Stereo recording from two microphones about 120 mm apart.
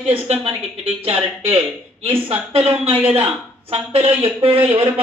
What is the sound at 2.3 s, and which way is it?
Speech, 50° right (ahead or behind).